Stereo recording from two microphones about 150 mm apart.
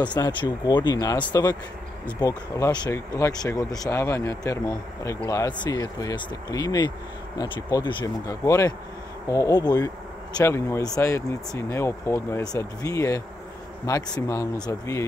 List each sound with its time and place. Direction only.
0.0 s speech: 30° left (ahead or behind)